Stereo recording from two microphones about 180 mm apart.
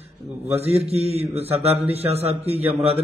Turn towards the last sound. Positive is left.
turn(degrees=-30)  # may be behind; listen again after turning